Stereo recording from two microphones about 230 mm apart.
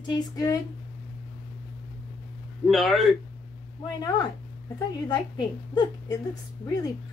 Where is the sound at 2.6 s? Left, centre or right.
Centre.